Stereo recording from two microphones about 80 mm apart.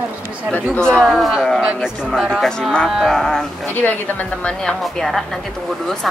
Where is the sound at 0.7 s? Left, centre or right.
Centre.